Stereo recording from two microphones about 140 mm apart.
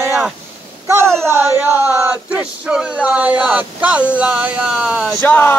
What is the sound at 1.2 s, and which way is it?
Male singing, 15° right (ahead or behind).